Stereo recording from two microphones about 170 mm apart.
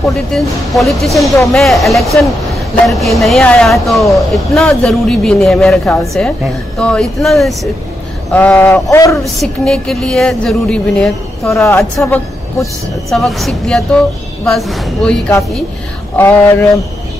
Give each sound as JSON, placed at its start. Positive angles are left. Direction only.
{"t": 0.1, "sound": "speech", "side_deg": 0}
{"t": 9.4, "sound": "speech", "side_deg": 0}
{"t": 11.5, "sound": "speech", "side_deg": 15}
{"t": 13.1, "sound": "speech", "side_deg": 0}